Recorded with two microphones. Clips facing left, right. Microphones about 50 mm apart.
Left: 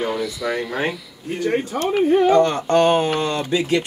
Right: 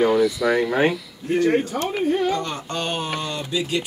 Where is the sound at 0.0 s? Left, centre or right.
Centre.